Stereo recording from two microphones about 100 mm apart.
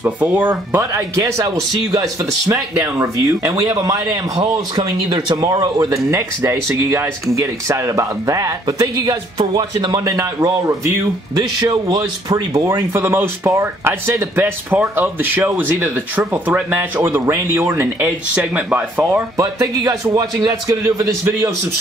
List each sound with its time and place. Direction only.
0.2 s speech: 20° right (ahead or behind)
0.7 s speech: 30° right (ahead or behind)
6.0 s speech: 25° right (ahead or behind)
11.3 s speech: 45° right (ahead or behind); by 19.2 s 20° right (ahead or behind)
19.3 s speech: 40° right (ahead or behind)